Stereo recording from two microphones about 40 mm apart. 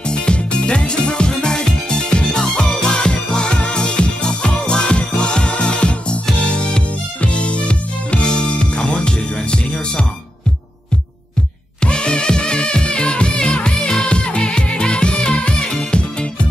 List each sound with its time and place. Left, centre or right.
0.1 s music: left
11.8 s music: left